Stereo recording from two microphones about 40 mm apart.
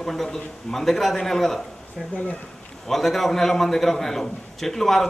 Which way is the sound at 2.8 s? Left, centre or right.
Centre.